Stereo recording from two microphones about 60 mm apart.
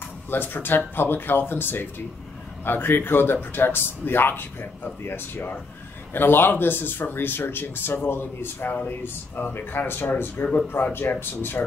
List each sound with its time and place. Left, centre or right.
0.3 s speech: left